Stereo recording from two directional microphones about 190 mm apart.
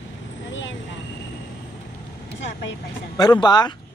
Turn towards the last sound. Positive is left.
turn(degrees=20)  # may be behind; listen again after turning